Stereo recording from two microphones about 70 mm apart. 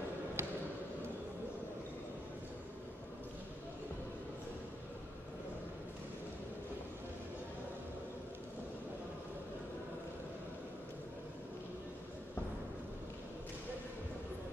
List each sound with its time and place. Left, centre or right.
0.4 s basketball bounce: right